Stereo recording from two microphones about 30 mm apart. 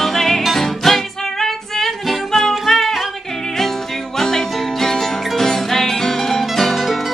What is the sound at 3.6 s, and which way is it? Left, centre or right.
Music, centre.